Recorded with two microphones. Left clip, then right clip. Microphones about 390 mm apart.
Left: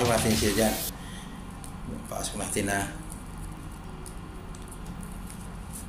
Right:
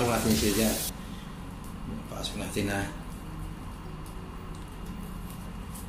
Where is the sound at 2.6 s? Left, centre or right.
Centre.